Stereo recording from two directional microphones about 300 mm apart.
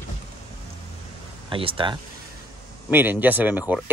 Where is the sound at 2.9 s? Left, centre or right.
Centre.